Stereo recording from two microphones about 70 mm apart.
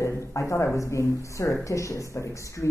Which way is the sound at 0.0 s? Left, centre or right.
Left.